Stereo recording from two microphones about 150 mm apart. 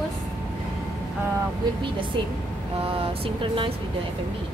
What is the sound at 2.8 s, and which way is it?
Speech, 40° right (ahead or behind).